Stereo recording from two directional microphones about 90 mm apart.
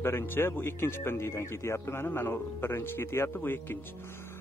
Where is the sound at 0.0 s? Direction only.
25° left (ahead or behind).